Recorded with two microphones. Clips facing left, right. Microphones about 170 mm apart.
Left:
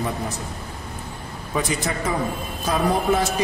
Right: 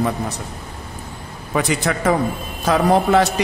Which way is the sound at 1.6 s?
75° right (ahead or behind).